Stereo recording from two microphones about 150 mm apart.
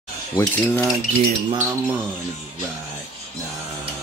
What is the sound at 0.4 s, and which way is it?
Cutlery, 20° left (ahead or behind).